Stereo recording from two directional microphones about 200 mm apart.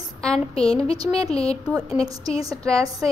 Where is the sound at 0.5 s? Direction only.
30° left (ahead or behind).